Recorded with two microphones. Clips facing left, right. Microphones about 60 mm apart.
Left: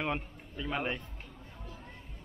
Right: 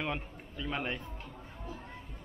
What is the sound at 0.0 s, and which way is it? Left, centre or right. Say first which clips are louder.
A man's voice: left 2 dB; centre.